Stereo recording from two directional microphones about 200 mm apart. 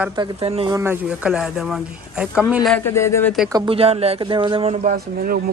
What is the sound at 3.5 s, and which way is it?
Speech, 25° right (ahead or behind).